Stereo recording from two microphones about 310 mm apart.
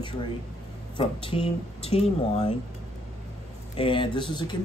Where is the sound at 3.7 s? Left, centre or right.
Centre.